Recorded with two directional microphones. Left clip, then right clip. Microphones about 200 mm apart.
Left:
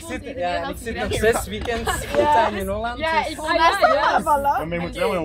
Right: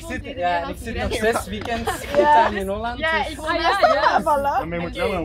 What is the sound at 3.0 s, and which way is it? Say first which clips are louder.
Speech: even; 25° left (ahead or behind).